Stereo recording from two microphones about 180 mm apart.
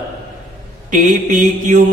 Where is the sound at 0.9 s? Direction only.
45° right (ahead or behind).